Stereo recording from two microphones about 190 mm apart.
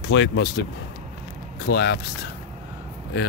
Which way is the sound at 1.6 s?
60° left (ahead or behind).